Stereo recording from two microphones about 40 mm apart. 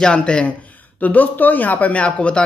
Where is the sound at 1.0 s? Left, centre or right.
Left.